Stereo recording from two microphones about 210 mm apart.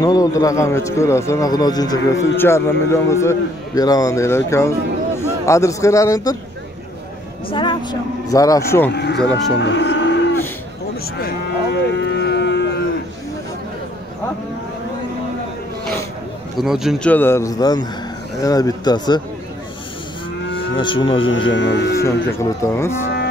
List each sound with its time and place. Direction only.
0.0 s a man's voice: 15° left (ahead or behind)
7.4 s a man's voice: 25° left (ahead or behind)
8.9 s moo: 55° left (ahead or behind)
9.6 s music: 60° left (ahead or behind)
11.1 s cattle: 50° left (ahead or behind)
16.5 s a man's voice: centre (ahead or behind); by 19.2 s 20° left (ahead or behind)
20.5 s moo: 25° left (ahead or behind)
21.3 s speech: 65° left (ahead or behind)
22.0 s a man's voice: 15° left (ahead or behind)